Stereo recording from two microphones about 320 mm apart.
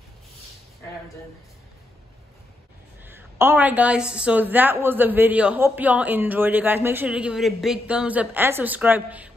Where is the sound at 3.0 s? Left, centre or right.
Centre.